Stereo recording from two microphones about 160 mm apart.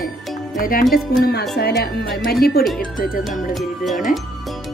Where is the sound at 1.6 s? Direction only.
90° left.